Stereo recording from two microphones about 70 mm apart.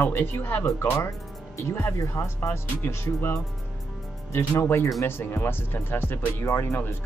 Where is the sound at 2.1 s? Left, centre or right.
Left.